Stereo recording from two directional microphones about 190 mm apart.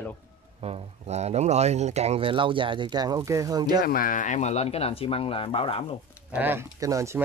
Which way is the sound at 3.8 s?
45° left (ahead or behind).